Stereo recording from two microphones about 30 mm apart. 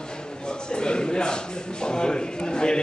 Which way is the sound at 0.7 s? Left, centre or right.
Left.